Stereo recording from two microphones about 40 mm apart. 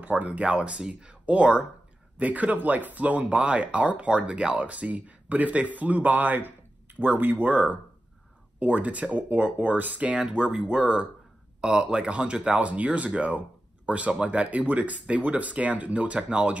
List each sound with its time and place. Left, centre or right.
0.0 s speech: right
10.1 s speech: right